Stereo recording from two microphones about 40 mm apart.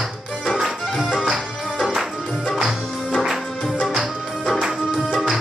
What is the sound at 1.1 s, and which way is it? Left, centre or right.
Music, centre.